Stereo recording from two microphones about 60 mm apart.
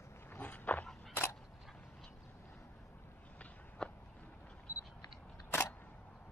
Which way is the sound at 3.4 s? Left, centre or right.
Left.